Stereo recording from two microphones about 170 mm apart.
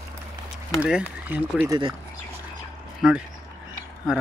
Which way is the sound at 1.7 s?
25° right (ahead or behind).